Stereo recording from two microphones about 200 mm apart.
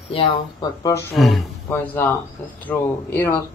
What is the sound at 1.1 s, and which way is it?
Speech, centre (ahead or behind).